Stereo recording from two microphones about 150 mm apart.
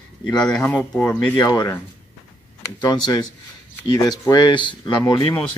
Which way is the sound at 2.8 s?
30° left (ahead or behind).